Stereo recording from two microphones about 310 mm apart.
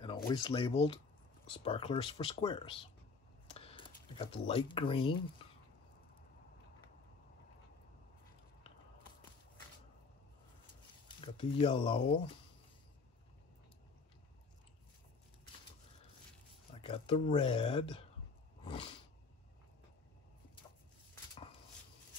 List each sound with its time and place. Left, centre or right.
0.3 s speech: centre
11.1 s speech: centre
16.7 s speech: centre
18.6 s roar: centre